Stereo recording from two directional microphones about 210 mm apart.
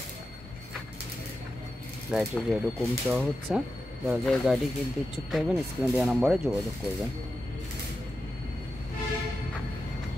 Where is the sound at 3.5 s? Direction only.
5° right (ahead or behind).